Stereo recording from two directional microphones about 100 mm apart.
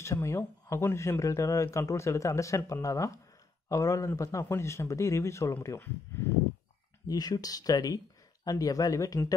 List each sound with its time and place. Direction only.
0.0 s speech: 30° left (ahead or behind)
7.1 s speech: 40° left (ahead or behind)